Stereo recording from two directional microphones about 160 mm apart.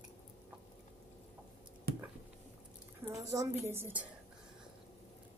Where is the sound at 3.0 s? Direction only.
20° right (ahead or behind).